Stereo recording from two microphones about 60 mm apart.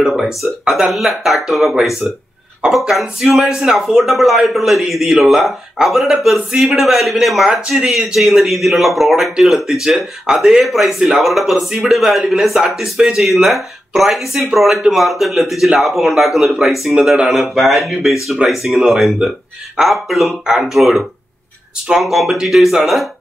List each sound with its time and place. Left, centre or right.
0.0 s speech: centre